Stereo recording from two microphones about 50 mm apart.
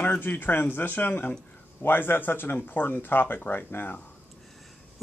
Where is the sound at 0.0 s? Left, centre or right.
Left.